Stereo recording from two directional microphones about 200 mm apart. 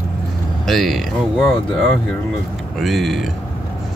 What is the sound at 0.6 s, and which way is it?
Speech, centre (ahead or behind).